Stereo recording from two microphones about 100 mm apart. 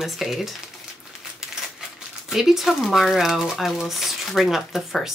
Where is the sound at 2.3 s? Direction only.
5° right (ahead or behind).